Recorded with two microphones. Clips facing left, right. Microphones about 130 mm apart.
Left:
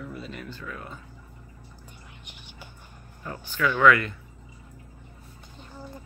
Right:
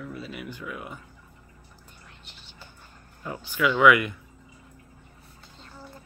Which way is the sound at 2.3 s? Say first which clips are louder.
Left 3 dB; 15° left (ahead or behind).